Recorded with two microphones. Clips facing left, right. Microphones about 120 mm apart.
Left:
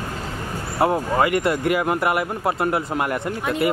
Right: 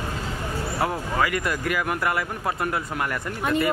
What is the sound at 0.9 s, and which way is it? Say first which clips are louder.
Speech: left 5 dB; 30° left (ahead or behind).